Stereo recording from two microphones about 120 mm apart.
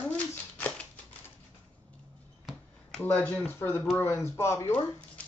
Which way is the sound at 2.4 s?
5° left (ahead or behind).